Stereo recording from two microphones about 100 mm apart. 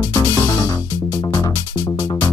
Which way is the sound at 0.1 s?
20° left (ahead or behind).